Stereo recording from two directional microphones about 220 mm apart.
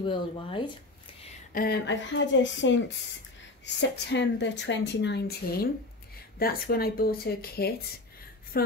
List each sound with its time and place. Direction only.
0.0 s speech: 25° left (ahead or behind)
1.5 s a woman's voice: 45° left (ahead or behind)